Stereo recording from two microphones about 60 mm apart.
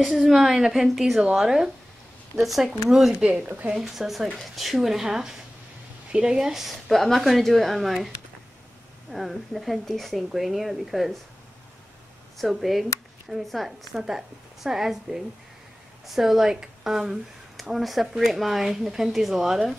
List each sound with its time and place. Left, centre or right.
0.2 s a woman's voice: centre
2.9 s a woman's voice: centre
3.3 s speech: right
3.7 s speech: centre
9.1 s speech: centre
12.4 s a woman's voice: centre